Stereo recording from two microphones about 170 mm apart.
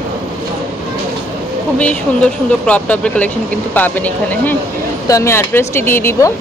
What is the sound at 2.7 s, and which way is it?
Speech, 10° left (ahead or behind).